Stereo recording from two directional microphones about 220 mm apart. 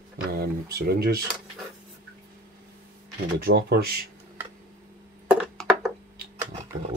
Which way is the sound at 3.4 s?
45° right (ahead or behind).